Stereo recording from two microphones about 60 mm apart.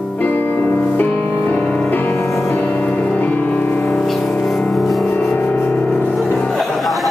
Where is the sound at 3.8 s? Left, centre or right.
Centre.